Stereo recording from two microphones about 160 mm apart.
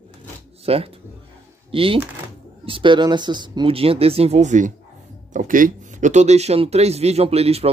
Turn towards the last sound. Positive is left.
turn(degrees=-40)  # may be behind; listen again after turning